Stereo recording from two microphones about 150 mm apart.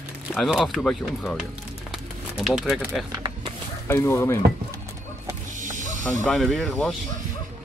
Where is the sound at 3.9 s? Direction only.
20° left (ahead or behind).